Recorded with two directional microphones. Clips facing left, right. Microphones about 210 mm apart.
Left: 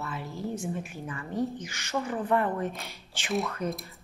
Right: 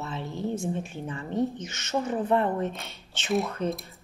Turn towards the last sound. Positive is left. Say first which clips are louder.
# right 3 dB
turn(degrees=-30)  # may be behind; listen again after turning